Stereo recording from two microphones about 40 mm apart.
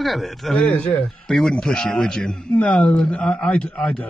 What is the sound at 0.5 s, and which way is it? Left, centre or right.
Speech, left.